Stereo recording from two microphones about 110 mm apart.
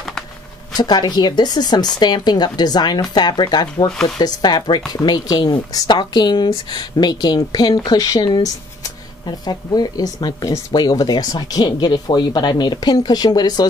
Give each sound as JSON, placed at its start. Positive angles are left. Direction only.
{"t": 0.7, "sound": "a woman's voice", "side_deg": 40}